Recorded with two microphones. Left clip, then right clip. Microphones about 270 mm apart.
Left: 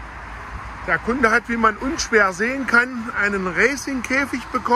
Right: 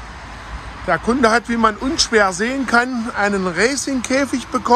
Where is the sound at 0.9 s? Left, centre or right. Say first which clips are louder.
Right 3 dB; centre.